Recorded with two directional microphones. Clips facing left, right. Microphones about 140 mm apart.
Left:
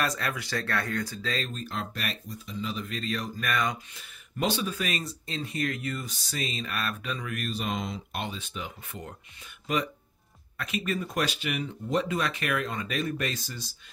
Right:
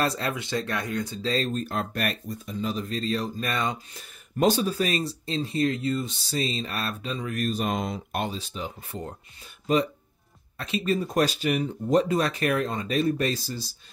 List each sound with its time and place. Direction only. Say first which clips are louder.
0.0 s speech: right 4 dB; 30° right (ahead or behind)
10.6 s speech: right 5 dB; 30° right (ahead or behind)